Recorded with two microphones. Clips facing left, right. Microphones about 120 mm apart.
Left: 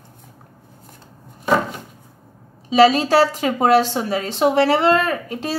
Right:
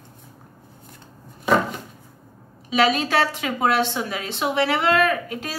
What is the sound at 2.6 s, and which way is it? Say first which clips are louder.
A woman's voice: left 6 dB; 30° left (ahead or behind).